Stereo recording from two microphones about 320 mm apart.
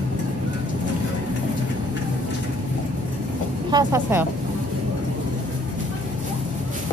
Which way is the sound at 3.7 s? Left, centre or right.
Centre.